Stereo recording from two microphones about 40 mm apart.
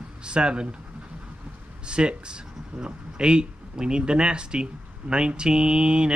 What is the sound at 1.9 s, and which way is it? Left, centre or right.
Speech, right.